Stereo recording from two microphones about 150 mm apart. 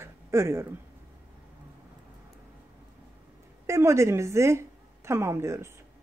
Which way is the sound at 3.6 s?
20° right (ahead or behind).